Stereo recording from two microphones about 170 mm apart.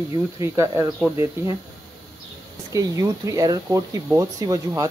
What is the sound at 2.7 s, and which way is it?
Speech, 20° right (ahead or behind).